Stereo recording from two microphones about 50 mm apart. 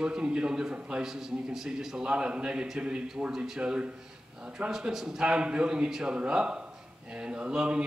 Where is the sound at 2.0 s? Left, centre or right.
Centre.